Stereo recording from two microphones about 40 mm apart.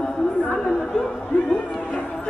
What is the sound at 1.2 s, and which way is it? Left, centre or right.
Music, left.